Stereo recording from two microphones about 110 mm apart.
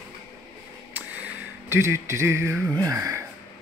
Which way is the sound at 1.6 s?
25° right (ahead or behind).